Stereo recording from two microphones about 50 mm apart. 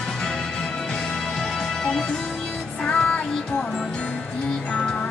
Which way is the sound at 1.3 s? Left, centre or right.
Centre.